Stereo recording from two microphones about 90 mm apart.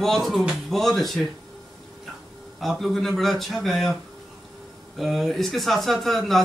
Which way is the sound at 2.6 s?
Centre (ahead or behind).